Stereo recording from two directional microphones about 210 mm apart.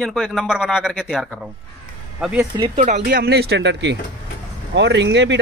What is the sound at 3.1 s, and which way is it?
Speech, 50° right (ahead or behind).